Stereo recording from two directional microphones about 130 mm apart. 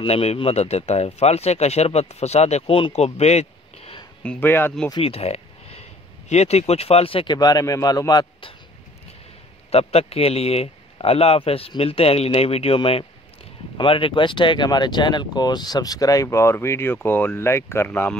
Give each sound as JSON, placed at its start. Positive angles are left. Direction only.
{"t": 0.0, "sound": "speech", "side_deg": 50}
{"t": 4.2, "sound": "speech", "side_deg": 10}
{"t": 5.0, "sound": "a sound", "side_deg": 50}
{"t": 6.7, "sound": "speech", "side_deg": 50}
{"t": 7.3, "sound": "a man's voice", "side_deg": 30}
{"t": 9.7, "sound": "speech", "side_deg": 50}